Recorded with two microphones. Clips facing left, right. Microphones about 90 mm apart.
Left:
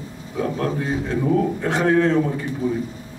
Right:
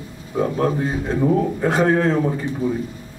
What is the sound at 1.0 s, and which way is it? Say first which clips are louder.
A man's voice: right 2 dB; 25° right (ahead or behind).